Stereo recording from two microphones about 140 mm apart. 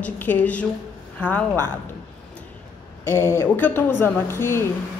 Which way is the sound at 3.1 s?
15° left (ahead or behind).